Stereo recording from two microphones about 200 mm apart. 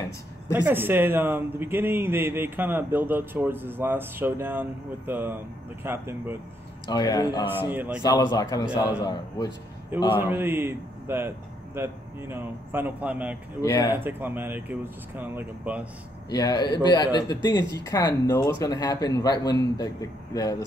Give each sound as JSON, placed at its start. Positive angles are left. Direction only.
{"t": 0.5, "sound": "a man's voice", "side_deg": -10}
{"t": 6.9, "sound": "a man's voice", "side_deg": 20}
{"t": 7.7, "sound": "a man's voice", "side_deg": -10}
{"t": 8.3, "sound": "a man's voice", "side_deg": 20}
{"t": 10.3, "sound": "speech", "side_deg": -10}
{"t": 13.6, "sound": "speech", "side_deg": 20}
{"t": 13.9, "sound": "a man's voice", "side_deg": -10}
{"t": 16.3, "sound": "a man's voice", "side_deg": 20}